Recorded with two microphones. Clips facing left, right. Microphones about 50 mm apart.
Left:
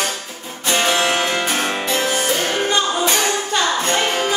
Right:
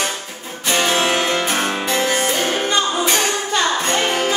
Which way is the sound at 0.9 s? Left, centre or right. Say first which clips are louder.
Even; right.